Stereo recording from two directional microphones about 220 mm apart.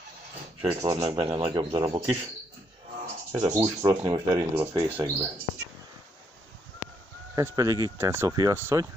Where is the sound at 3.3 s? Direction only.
15° right (ahead or behind).